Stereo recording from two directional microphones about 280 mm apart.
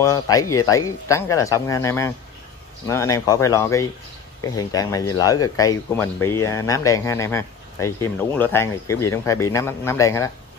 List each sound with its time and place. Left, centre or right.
0.0 s speech: centre